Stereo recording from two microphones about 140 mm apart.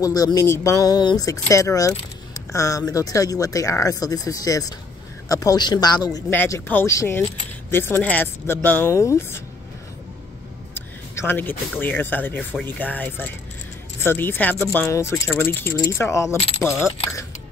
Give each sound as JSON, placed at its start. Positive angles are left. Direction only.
{"t": 0.0, "sound": "speech", "side_deg": 25}
{"t": 6.3, "sound": "speech", "side_deg": 15}
{"t": 10.7, "sound": "a sound", "side_deg": 15}
{"t": 11.8, "sound": "speech", "side_deg": 15}
{"t": 16.6, "sound": "speech", "side_deg": 10}